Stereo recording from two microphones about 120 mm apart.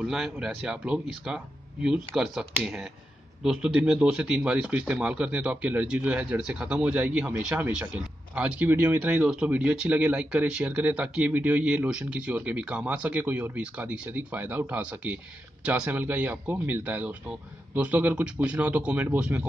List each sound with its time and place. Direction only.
0.0 s speech: 5° right (ahead or behind)